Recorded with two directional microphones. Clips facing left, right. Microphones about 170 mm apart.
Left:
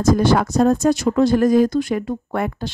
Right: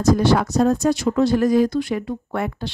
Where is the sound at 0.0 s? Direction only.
50° left (ahead or behind).